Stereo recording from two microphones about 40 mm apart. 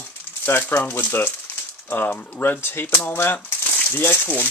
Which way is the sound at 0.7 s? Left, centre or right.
Left.